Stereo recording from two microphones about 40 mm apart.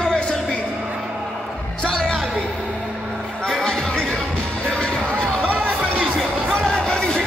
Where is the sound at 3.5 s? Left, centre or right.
Centre.